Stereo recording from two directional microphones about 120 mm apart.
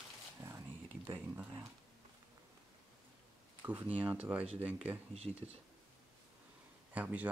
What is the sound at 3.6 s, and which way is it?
Speech, 15° right (ahead or behind).